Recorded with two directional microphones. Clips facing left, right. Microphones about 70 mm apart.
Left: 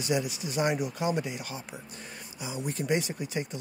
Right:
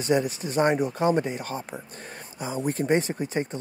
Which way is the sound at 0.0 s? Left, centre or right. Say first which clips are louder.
Right 6 dB; right.